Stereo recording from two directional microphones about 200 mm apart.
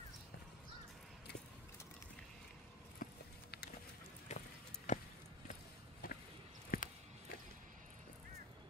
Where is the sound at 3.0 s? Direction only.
45° left (ahead or behind).